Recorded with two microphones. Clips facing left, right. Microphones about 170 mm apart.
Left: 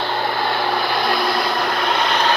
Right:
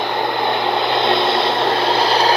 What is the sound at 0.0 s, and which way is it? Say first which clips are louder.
Vehicle: right 2 dB; 20° right (ahead or behind).